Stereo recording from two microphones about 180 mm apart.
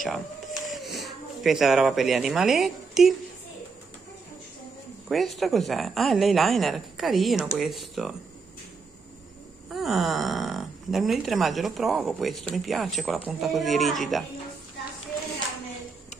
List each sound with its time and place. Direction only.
0.0 s a sound: centre (ahead or behind)
1.0 s a woman's voice: centre (ahead or behind)
5.0 s speech: centre (ahead or behind)
9.7 s speech: centre (ahead or behind)